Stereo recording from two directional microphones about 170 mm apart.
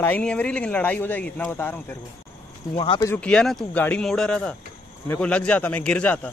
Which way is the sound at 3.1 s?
5° left (ahead or behind).